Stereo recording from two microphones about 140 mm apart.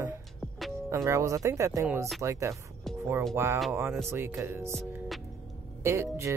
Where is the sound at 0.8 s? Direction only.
20° right (ahead or behind).